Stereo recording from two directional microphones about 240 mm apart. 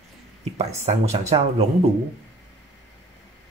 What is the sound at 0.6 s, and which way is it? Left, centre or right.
Speech, right.